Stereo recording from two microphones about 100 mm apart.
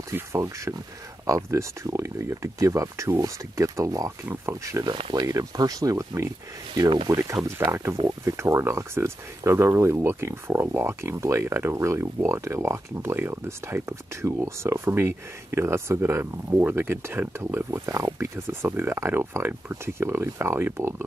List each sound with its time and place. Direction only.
0.1 s speech: 30° right (ahead or behind)
4.8 s speech: 60° right (ahead or behind)
5.2 s speech: 35° right (ahead or behind)
7.7 s speech: 25° right (ahead or behind)